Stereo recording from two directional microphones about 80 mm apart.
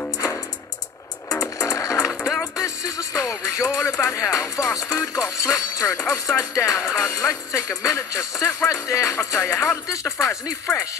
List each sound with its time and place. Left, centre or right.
1.4 s music: left
6.8 s music: centre
7.1 s speech: left